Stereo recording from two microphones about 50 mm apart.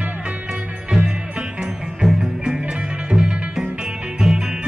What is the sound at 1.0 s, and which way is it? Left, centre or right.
Music, right.